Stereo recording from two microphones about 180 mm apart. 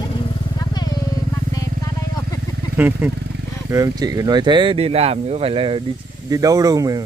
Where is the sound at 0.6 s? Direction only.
20° left (ahead or behind).